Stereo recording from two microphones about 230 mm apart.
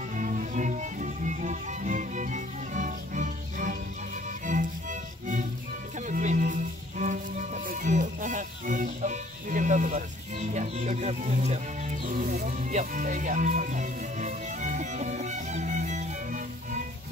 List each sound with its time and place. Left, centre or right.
0.1 s music: right
5.9 s music: right